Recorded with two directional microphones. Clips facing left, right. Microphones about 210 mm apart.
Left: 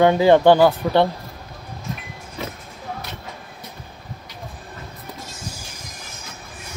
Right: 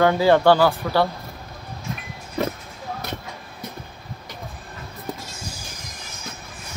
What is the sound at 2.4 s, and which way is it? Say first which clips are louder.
Speech: right 7 dB; 50° right (ahead or behind).